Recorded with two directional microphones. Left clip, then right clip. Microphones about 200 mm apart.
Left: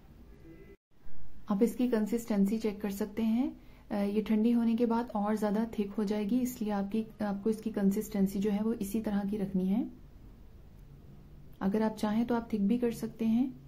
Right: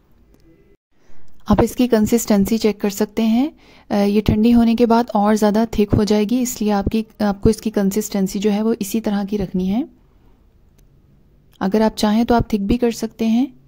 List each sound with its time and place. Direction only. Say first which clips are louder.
1.4 s a woman's voice: right 14 dB; 50° right (ahead or behind)
11.5 s a woman's voice: right 15 dB; 50° right (ahead or behind)